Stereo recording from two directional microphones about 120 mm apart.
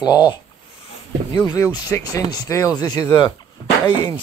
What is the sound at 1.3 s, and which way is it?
Speech, 25° left (ahead or behind).